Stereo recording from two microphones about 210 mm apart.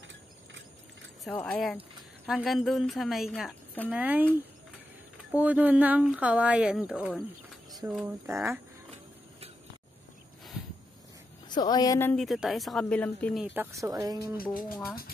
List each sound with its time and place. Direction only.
1.2 s a woman's voice: 5° left (ahead or behind)
3.9 s speech: 5° right (ahead or behind)
5.4 s speech: 5° right (ahead or behind)
11.4 s a woman's voice: 20° left (ahead or behind); by 14.3 s 15° right (ahead or behind)
14.3 s speech: 45° left (ahead or behind)